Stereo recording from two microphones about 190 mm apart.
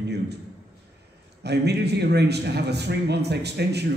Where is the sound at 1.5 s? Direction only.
60° right (ahead or behind).